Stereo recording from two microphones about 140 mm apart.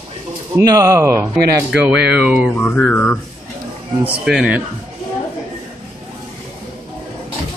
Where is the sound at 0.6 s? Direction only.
25° right (ahead or behind).